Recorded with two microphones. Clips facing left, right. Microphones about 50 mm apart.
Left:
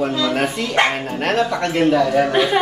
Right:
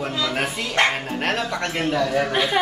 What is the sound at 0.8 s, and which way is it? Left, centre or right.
Speech, centre.